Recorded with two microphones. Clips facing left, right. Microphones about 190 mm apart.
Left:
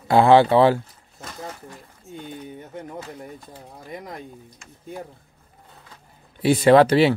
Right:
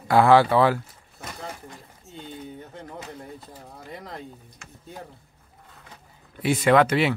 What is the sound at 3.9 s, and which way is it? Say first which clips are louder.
Speech: left 3 dB; 15° left (ahead or behind).